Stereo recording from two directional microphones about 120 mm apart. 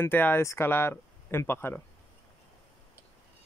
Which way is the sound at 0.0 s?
15° left (ahead or behind).